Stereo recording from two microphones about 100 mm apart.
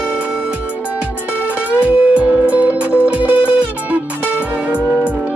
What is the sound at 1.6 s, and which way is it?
Music, 15° right (ahead or behind).